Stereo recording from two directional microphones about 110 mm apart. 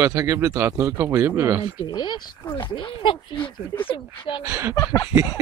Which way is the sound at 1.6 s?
45° left (ahead or behind).